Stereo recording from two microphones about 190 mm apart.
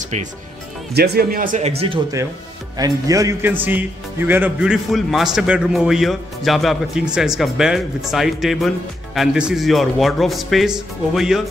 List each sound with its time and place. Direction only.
0.0 s speech: 40° right (ahead or behind)
0.9 s speech: 60° right (ahead or behind); by 2.0 s 30° right (ahead or behind)
2.8 s a man's voice: 20° right (ahead or behind); by 11.4 s centre (ahead or behind)